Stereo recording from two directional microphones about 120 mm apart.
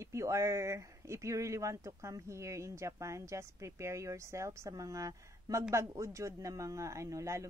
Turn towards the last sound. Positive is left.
turn(degrees=-25)  # may be behind; listen again after turning